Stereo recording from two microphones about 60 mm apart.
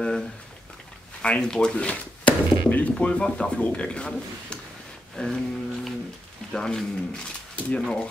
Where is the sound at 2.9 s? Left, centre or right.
Centre.